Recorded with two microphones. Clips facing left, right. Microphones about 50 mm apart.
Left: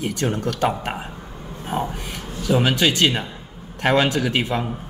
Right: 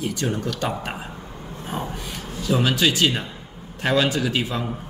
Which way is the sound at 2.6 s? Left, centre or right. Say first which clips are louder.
Left 1 dB; left.